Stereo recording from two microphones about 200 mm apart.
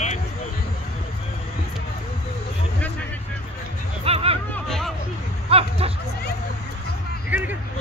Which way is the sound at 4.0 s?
30° right (ahead or behind).